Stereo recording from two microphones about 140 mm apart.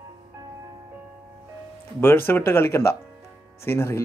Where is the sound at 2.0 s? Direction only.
15° left (ahead or behind).